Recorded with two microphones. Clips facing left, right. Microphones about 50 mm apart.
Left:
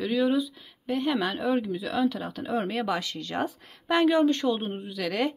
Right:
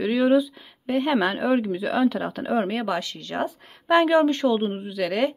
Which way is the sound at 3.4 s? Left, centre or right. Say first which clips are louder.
Right 4 dB; centre.